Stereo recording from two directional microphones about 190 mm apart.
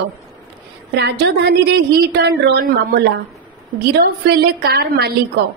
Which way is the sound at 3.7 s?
60° right (ahead or behind).